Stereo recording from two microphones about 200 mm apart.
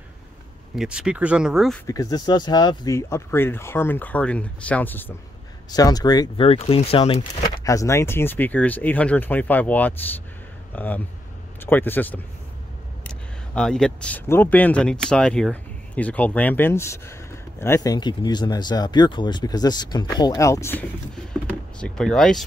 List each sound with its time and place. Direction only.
0.7 s speech: 5° right (ahead or behind)
1.9 s speech: 20° left (ahead or behind)
7.5 s speech: 15° left (ahead or behind)
13.6 s speech: 5° left (ahead or behind)